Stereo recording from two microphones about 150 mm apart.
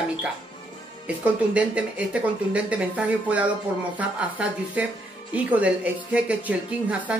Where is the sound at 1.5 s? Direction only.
10° right (ahead or behind).